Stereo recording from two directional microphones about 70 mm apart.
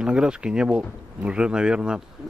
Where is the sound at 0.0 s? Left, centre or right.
Centre.